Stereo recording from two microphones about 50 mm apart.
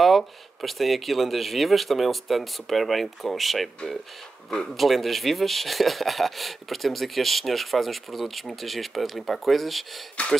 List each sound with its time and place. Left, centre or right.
0.0 s speech: centre
10.2 s speech: left